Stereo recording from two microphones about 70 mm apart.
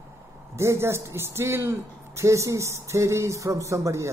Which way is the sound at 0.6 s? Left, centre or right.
Right.